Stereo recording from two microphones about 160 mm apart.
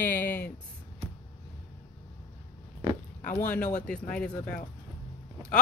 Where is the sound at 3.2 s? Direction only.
55° left (ahead or behind).